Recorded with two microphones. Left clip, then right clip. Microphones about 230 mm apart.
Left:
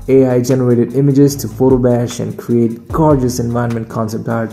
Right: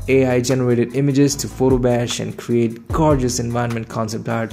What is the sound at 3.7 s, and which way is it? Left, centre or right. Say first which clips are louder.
Speech: left 4 dB; right.